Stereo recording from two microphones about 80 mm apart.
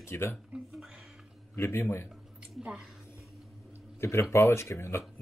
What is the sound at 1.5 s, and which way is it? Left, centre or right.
Speech, left.